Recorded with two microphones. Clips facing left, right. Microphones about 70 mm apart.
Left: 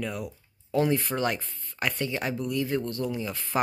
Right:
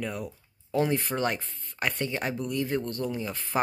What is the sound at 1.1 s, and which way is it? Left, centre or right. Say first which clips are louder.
Speech: left 1 dB; right.